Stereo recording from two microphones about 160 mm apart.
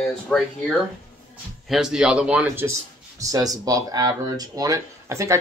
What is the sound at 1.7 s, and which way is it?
Speech, 5° right (ahead or behind).